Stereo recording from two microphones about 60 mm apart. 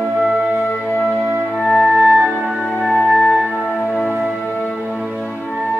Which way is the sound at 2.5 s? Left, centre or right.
Centre.